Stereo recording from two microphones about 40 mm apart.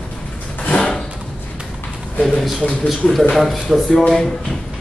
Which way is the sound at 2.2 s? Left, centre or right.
Centre.